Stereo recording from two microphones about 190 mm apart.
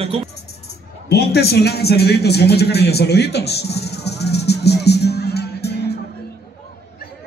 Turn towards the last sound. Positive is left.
turn(degrees=60)  # may be behind; listen again after turning